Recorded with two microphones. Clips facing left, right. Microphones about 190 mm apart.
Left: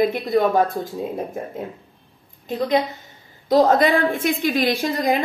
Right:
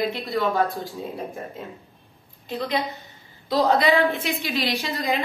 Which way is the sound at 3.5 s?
45° left (ahead or behind).